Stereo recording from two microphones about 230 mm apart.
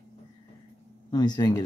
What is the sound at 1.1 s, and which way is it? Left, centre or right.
Speech, centre.